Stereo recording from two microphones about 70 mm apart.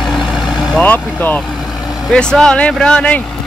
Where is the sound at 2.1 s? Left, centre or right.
Centre.